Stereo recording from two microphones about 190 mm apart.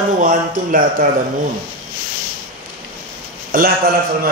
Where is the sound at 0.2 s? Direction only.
45° right (ahead or behind).